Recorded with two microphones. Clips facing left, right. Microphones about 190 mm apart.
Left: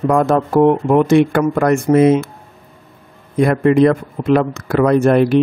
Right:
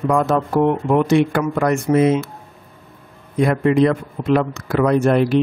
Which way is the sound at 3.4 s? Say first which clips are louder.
Left 3 dB; 55° left (ahead or behind).